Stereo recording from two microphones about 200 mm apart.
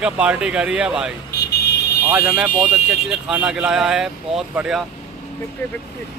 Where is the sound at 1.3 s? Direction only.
55° left (ahead or behind).